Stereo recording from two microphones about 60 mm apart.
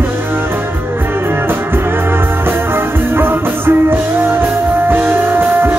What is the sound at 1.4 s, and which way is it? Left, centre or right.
Music, right.